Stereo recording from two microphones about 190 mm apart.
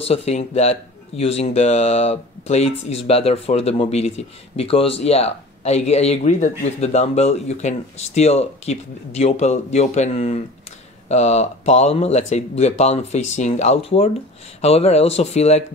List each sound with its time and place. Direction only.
0.1 s speech: 35° left (ahead or behind)